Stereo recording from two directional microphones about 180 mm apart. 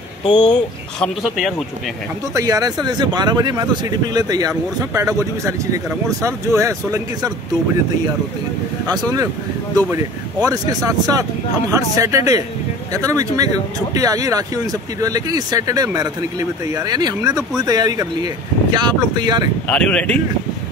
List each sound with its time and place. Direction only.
0.2 s speech: 25° left (ahead or behind)
0.9 s speech: centre (ahead or behind)
2.3 s speech: 20° right (ahead or behind)
8.8 s speech: 20° right (ahead or behind)
19.7 s speech: 5° left (ahead or behind)